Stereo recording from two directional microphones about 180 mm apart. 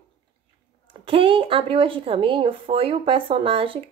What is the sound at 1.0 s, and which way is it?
Speech, 30° right (ahead or behind).